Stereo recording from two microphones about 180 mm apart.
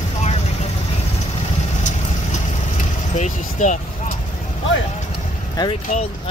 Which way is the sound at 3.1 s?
40° left (ahead or behind).